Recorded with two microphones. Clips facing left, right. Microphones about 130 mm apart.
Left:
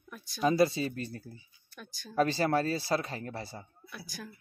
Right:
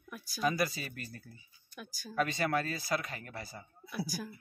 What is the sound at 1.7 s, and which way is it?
Speech, 5° right (ahead or behind).